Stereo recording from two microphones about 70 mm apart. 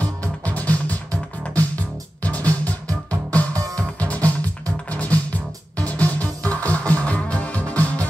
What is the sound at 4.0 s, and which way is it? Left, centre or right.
Music, centre.